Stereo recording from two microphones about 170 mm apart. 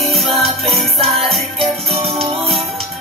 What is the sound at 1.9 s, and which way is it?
Music, 35° right (ahead or behind).